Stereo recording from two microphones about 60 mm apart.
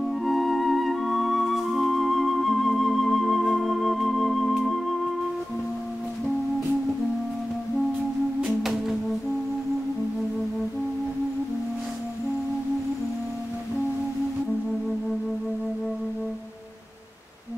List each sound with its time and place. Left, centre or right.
0.0 s music: centre
8.5 s music: centre